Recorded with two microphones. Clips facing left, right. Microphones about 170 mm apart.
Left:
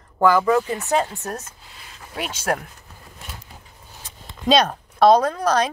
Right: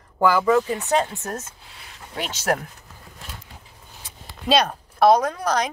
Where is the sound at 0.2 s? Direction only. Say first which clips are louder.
Left 1 dB; 10° right (ahead or behind).